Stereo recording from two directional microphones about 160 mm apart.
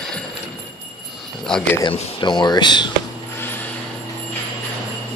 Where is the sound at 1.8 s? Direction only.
30° left (ahead or behind).